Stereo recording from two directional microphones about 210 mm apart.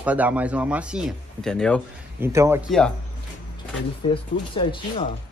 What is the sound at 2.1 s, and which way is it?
Speech, 10° right (ahead or behind).